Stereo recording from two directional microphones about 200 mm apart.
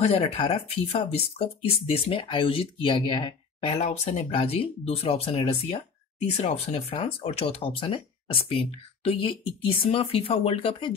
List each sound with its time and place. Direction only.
0.0 s speech: 30° left (ahead or behind)